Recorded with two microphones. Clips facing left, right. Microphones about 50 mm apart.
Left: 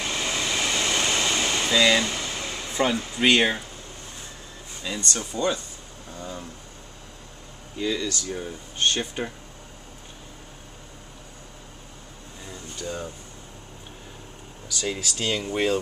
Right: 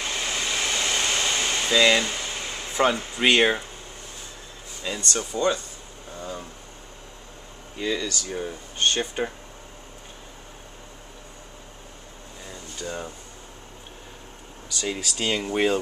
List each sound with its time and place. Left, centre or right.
0.0 s vehicle: centre
0.7 s vehicle: centre
1.8 s speech: centre
2.2 s a sound: centre
3.2 s speech: centre
4.8 s speech: centre
7.7 s speech: centre
12.4 s air conditioning: centre
14.7 s speech: centre
15.1 s speech: centre